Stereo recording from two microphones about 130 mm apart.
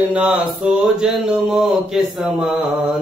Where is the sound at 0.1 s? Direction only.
10° right (ahead or behind).